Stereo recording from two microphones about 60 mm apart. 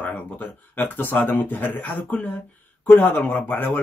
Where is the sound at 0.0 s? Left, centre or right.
Left.